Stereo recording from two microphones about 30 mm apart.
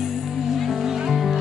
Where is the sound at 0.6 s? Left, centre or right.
Centre.